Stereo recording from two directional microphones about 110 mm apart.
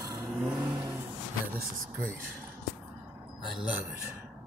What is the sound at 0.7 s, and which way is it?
Vehicle, 25° right (ahead or behind).